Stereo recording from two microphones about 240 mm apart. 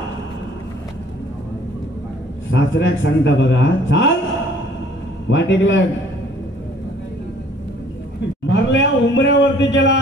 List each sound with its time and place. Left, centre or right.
2.5 s a man's voice: left
5.3 s a man's voice: left
8.5 s a man's voice: left